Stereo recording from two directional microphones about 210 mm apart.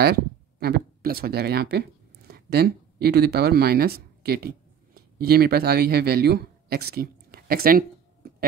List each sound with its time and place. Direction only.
0.0 s speech: 50° right (ahead or behind)